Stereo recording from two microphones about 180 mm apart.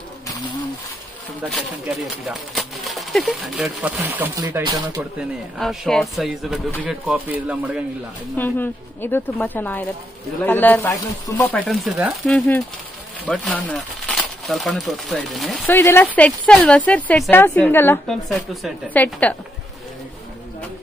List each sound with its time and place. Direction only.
2.0 s speech: centre (ahead or behind)
4.6 s speech: 20° right (ahead or behind)
5.6 s speech: centre (ahead or behind)
8.4 s a woman's voice: 10° left (ahead or behind)
11.5 s a woman's voice: 5° left (ahead or behind)
15.6 s a woman's voice: 15° left (ahead or behind)
18.0 s speech: centre (ahead or behind)